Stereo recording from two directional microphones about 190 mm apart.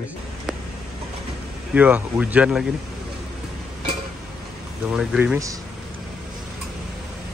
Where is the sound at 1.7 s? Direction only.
5° right (ahead or behind).